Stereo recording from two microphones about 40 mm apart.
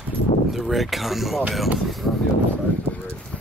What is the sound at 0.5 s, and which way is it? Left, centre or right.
Speech, centre.